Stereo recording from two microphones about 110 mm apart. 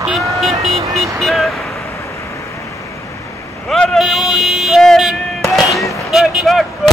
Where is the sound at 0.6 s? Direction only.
70° right (ahead or behind).